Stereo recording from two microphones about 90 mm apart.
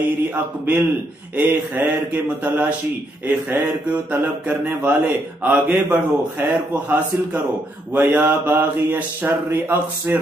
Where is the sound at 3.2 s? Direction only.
20° right (ahead or behind).